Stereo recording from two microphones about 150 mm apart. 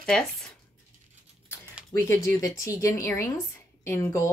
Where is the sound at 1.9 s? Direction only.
20° left (ahead or behind).